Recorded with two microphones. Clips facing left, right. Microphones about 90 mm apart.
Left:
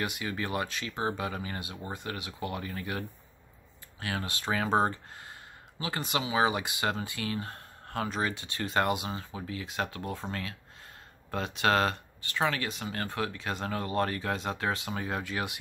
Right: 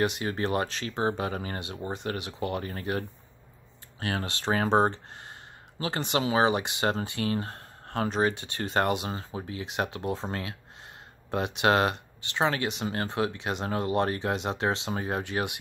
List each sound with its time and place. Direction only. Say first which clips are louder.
0.5 s speech: right 4 dB; 40° right (ahead or behind)
1.8 s speech: right 5 dB; 25° right (ahead or behind)
2.0 s speech: right 5 dB; 40° right (ahead or behind); by 15.6 s 20° right (ahead or behind)